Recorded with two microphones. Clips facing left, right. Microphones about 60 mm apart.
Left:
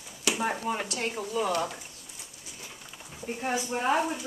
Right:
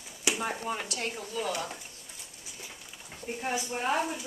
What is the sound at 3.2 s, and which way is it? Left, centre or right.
Speech, centre.